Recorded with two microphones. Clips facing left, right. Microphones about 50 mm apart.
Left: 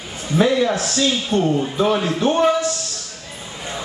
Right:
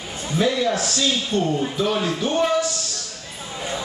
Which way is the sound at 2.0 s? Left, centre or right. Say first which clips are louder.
Left 4 dB; centre.